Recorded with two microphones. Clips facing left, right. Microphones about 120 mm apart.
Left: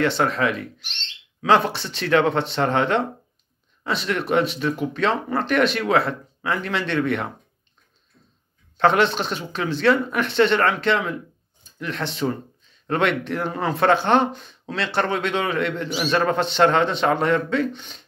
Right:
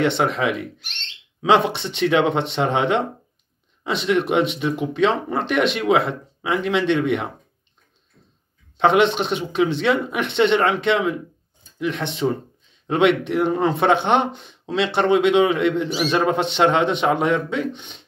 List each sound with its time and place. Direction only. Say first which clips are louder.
0.0 s speech: right 1 dB; 20° right (ahead or behind)
8.7 s speech: right 2 dB; 20° right (ahead or behind)